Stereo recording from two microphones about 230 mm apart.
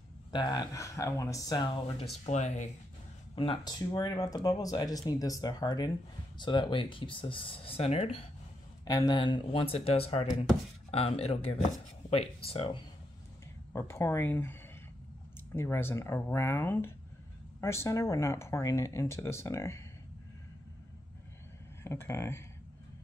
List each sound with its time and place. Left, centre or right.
0.3 s speech: centre
2.2 s speech: left
13.7 s speech: centre
21.8 s speech: centre